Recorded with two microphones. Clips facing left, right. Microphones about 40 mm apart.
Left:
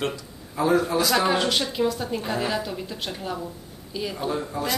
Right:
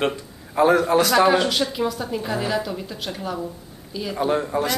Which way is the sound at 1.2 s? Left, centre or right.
Centre.